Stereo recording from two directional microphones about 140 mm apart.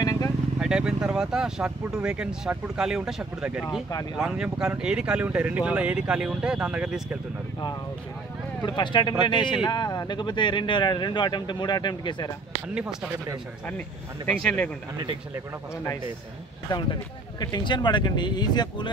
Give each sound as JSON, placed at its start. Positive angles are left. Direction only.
{"t": 0.0, "sound": "vehicle", "side_deg": 25}
{"t": 0.6, "sound": "speech", "side_deg": -5}
{"t": 8.6, "sound": "speech", "side_deg": 35}
{"t": 12.6, "sound": "speech", "side_deg": -10}
{"t": 13.7, "sound": "speech", "side_deg": 10}
{"t": 16.7, "sound": "speech", "side_deg": 30}